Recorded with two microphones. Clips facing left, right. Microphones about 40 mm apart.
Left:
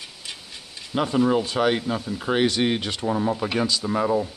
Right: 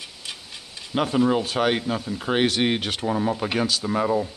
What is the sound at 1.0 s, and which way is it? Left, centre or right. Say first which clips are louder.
Speech: even; centre.